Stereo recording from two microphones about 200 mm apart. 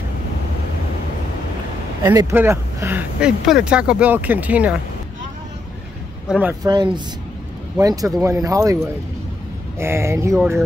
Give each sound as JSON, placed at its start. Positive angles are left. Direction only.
{"t": 2.0, "sound": "speech", "side_deg": -15}
{"t": 6.2, "sound": "speech", "side_deg": -5}
{"t": 6.6, "sound": "speech", "side_deg": -20}
{"t": 9.8, "sound": "speech", "side_deg": -10}